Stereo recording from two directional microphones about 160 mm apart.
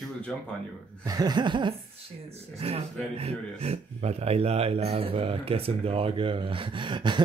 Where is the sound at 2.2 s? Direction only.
40° right (ahead or behind).